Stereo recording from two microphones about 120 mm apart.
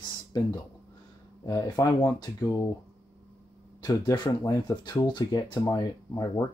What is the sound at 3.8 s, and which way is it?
Speech, 35° left (ahead or behind).